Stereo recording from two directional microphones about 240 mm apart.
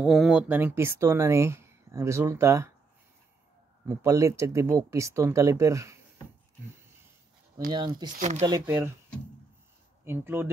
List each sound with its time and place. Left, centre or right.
0.0 s speech: centre
3.8 s speech: centre
6.7 s a sound: centre
7.7 s speech: centre
8.2 s speech: right
8.5 s speech: centre
10.0 s speech: centre